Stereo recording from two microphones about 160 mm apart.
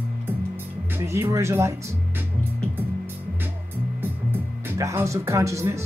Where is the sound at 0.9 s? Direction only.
15° right (ahead or behind).